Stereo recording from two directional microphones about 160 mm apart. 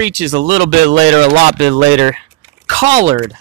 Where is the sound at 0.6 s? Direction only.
45° right (ahead or behind).